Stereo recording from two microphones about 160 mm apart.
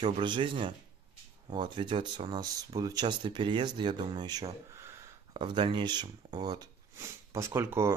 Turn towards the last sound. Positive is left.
turn(degrees=-15)  # may be behind; listen again after turning